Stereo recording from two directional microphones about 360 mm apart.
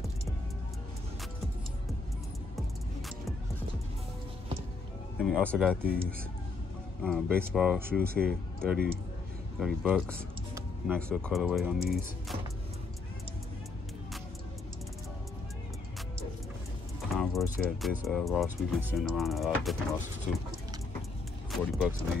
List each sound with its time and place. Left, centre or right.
5.2 s speech: centre
7.0 s speech: centre
8.0 s speech: right
8.3 s speech: centre
17.1 s speech: centre
21.5 s speech: centre